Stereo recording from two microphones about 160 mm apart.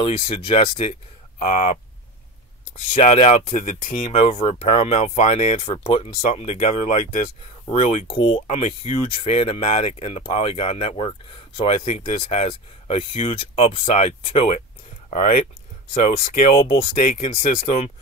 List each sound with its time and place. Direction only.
0.0 s speech: 35° left (ahead or behind)
1.4 s speech: 50° left (ahead or behind)
2.9 s speech: 45° left (ahead or behind)
12.2 s speech: 45° left (ahead or behind)
12.4 s speech: 35° left (ahead or behind)
15.0 s speech: 55° left (ahead or behind)